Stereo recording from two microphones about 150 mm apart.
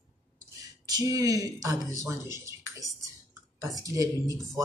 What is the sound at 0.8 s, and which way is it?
Speech, 25° right (ahead or behind).